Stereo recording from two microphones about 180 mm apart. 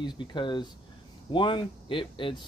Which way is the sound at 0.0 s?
25° left (ahead or behind).